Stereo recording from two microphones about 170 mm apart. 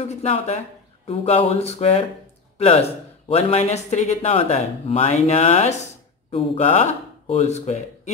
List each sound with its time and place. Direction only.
0.0 s speech: 40° left (ahead or behind)